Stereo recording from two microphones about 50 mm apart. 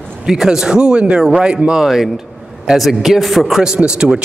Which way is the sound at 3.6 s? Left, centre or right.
Centre.